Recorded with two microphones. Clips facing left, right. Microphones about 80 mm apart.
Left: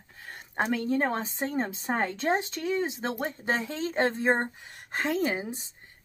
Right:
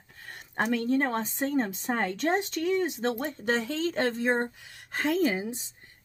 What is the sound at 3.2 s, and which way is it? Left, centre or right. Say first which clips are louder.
A woman's voice: right 1 dB; left.